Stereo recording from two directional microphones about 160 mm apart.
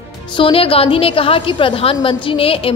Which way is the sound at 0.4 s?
35° left (ahead or behind).